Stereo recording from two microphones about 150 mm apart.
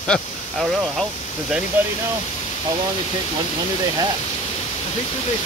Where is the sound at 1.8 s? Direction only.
10° right (ahead or behind).